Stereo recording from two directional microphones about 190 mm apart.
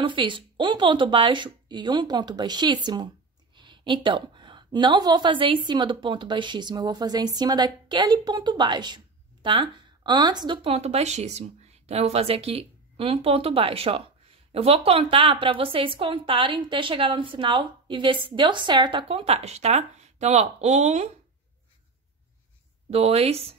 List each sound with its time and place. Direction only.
0.0 s a woman's voice: 25° right (ahead or behind)
22.8 s speech: 35° right (ahead or behind)